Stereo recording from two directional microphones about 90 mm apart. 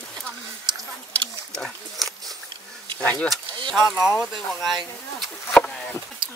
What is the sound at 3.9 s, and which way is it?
Speech, 30° left (ahead or behind).